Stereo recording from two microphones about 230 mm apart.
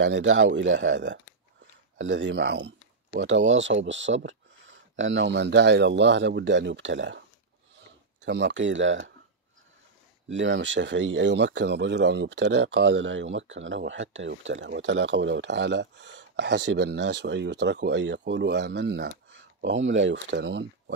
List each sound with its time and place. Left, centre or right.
0.0 s speech: right
10.3 s speech: right